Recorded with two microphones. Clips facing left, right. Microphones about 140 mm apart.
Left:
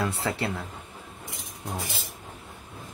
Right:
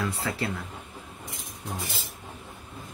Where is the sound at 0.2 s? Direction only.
25° left (ahead or behind).